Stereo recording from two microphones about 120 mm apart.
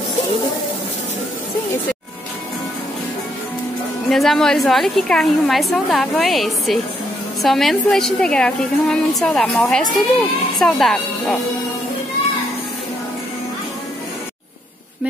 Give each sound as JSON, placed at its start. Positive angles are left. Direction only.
{"t": 4.1, "sound": "a woman's voice", "side_deg": 0}